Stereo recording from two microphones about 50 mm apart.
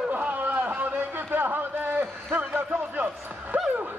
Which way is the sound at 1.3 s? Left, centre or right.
Right.